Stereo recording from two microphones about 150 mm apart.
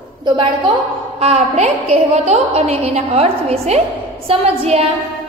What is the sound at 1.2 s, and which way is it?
A woman's voice, 45° right (ahead or behind).